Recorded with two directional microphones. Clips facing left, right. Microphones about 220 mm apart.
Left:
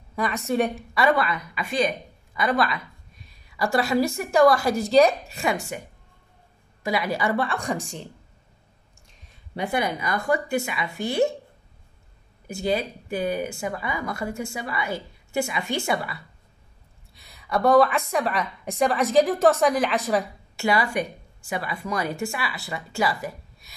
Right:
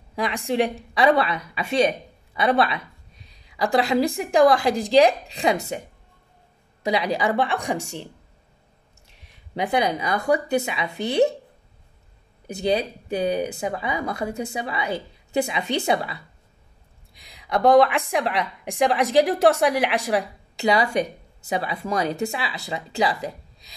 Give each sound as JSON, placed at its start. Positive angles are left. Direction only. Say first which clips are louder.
{"t": 0.1, "sound": "a woman's voice", "louder": "even", "side_deg": -15}
{"t": 0.9, "sound": "a woman's voice", "louder": "right 3 dB", "side_deg": -25}
{"t": 6.8, "sound": "a woman's voice", "louder": "right 2 dB", "side_deg": -20}
{"t": 9.1, "sound": "a sound", "louder": "right 3 dB", "side_deg": -75}
{"t": 9.7, "sound": "speech", "louder": "right 3 dB", "side_deg": -20}
{"t": 13.1, "sound": "a woman's voice", "louder": "right 3 dB", "side_deg": -20}